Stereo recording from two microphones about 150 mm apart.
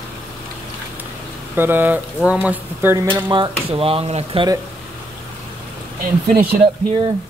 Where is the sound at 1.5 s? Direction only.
15° right (ahead or behind).